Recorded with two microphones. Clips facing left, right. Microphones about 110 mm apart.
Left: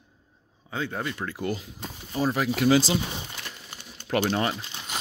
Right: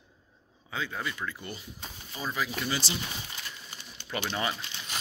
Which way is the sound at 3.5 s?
55° left (ahead or behind).